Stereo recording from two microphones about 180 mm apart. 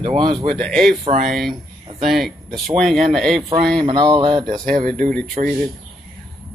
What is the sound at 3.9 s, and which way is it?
Speech, 25° right (ahead or behind).